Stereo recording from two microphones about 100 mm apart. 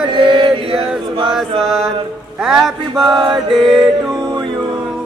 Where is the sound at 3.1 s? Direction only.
55° right (ahead or behind).